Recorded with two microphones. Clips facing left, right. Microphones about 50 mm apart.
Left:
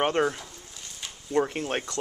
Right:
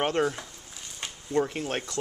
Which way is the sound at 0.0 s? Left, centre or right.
Centre.